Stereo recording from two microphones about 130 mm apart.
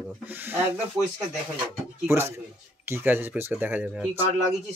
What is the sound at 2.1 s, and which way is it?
Speech, 20° right (ahead or behind).